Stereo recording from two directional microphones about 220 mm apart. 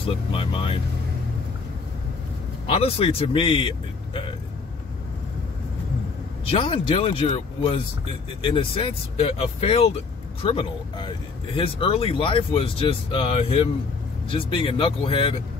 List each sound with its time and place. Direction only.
0.0 s speech: 25° left (ahead or behind)
2.7 s speech: 25° left (ahead or behind)
6.4 s speech: 25° left (ahead or behind)